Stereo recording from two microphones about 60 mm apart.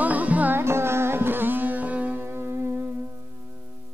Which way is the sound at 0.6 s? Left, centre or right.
Right.